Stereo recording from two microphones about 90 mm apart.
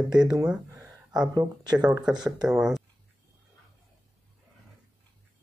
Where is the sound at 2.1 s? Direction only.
10° right (ahead or behind).